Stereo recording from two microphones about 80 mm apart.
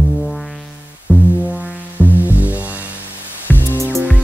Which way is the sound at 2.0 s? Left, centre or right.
Right.